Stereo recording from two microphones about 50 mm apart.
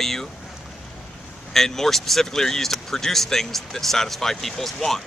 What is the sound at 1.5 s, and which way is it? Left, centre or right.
Speech, centre.